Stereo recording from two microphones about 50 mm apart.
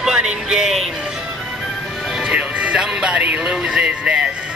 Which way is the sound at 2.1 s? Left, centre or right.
Centre.